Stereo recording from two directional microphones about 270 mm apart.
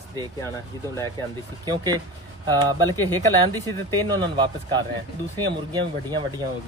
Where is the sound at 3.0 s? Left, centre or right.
Centre.